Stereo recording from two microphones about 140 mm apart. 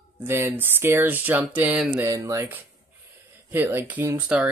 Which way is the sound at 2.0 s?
20° right (ahead or behind).